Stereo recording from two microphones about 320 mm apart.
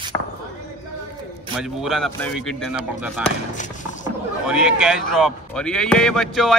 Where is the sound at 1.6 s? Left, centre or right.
Centre.